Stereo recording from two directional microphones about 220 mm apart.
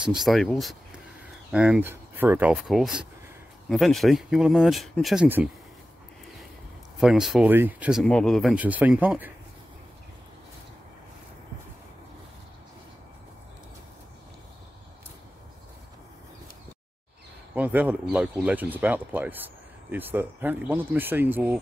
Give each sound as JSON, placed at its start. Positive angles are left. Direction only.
{"t": 0.0, "sound": "speech", "side_deg": 0}
{"t": 7.0, "sound": "speech", "side_deg": 0}
{"t": 17.6, "sound": "speech", "side_deg": -5}